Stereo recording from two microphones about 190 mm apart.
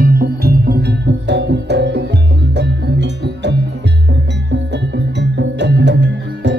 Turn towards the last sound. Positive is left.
turn(degrees=-65)  # may be behind; listen again after turning